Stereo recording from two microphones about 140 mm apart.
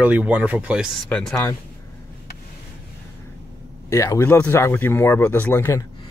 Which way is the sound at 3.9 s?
20° left (ahead or behind).